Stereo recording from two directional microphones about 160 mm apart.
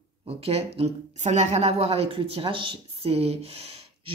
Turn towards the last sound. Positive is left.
turn(degrees=-40)  # may be behind; listen again after turning